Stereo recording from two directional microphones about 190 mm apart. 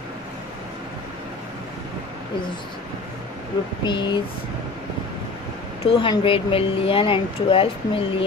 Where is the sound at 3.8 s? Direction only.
25° left (ahead or behind).